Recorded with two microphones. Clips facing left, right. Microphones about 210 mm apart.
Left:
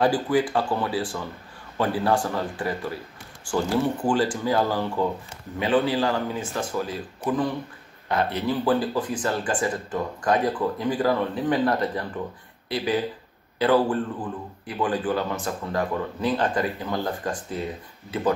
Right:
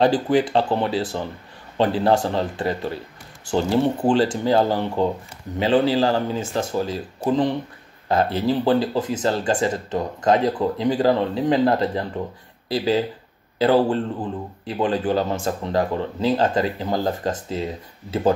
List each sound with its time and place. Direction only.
0.0 s speech: 25° right (ahead or behind)
13.6 s speech: 25° right (ahead or behind)